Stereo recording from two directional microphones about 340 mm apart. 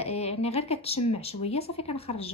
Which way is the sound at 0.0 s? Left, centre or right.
Centre.